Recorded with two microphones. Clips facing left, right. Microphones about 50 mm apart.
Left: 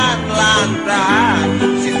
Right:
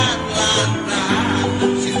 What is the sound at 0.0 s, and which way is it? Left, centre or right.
Music, left.